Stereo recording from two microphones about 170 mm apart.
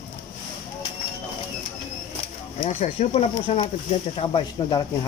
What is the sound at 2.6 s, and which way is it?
Speech, 35° left (ahead or behind).